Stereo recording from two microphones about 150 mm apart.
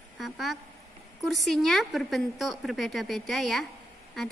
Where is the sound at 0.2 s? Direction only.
Centre (ahead or behind).